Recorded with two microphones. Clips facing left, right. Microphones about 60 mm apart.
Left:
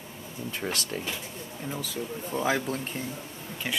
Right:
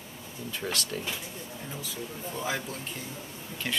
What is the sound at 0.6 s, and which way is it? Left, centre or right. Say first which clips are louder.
Speech: left 1 dB; centre.